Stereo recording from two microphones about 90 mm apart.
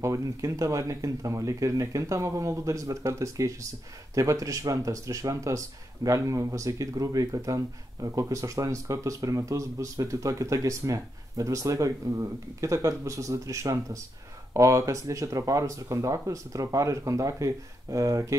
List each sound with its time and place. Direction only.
0.0 s speech: 35° right (ahead or behind)